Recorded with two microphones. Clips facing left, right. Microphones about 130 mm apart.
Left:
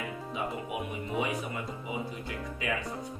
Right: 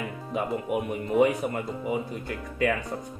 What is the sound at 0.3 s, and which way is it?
Speech, 55° right (ahead or behind).